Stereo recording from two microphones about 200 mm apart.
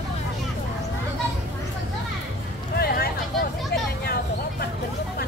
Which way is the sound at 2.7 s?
50° left (ahead or behind).